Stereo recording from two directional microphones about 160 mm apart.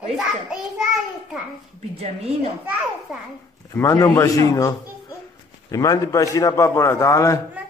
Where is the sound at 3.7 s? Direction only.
20° left (ahead or behind).